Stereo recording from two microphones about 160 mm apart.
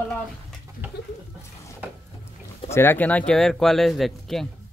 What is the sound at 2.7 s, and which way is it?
Speech, 15° left (ahead or behind).